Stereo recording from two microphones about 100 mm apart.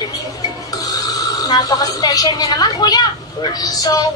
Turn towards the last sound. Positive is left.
turn(degrees=40)  # may be behind; listen again after turning